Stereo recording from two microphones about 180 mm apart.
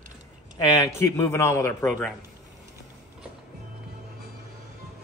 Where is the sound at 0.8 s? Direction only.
15° left (ahead or behind).